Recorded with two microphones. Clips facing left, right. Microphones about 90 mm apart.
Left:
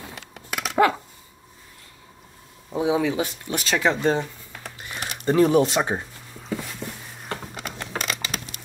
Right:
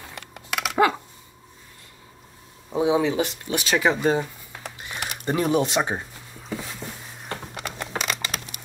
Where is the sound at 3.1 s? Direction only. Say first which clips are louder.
Right 1 dB; 5° right (ahead or behind).